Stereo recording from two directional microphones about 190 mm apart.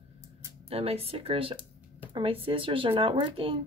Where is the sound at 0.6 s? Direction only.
30° right (ahead or behind).